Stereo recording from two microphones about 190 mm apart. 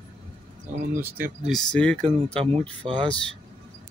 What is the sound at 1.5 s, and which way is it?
Speech, 5° left (ahead or behind).